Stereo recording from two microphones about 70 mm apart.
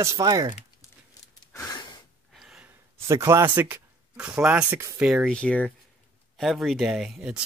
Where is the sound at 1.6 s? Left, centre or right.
Left.